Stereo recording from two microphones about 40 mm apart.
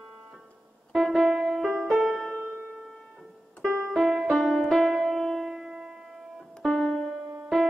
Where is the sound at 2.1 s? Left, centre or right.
Centre.